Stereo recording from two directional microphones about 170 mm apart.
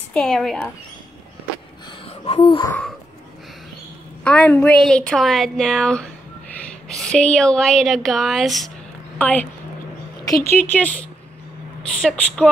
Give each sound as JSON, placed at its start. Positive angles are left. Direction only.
{"t": 0.1, "sound": "a woman's voice", "side_deg": 0}
{"t": 2.2, "sound": "a sound", "side_deg": 30}
{"t": 4.2, "sound": "a woman's voice", "side_deg": 5}